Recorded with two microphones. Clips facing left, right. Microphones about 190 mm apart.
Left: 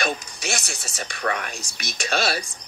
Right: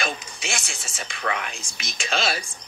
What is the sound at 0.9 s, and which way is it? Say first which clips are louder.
Speech: left 2 dB; 45° left (ahead or behind).